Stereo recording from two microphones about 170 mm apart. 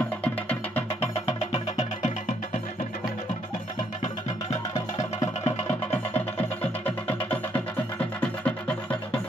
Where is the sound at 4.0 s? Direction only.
40° left (ahead or behind).